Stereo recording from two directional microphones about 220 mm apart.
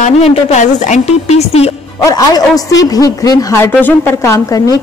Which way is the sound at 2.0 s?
15° left (ahead or behind).